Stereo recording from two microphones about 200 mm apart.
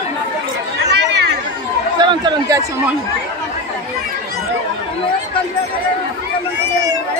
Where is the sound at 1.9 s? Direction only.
20° right (ahead or behind).